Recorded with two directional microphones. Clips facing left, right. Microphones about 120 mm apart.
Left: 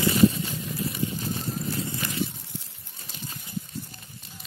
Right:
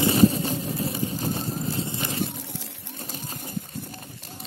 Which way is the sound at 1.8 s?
30° right (ahead or behind).